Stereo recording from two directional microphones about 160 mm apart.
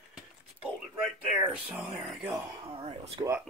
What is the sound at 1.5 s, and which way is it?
Speech, 5° right (ahead or behind).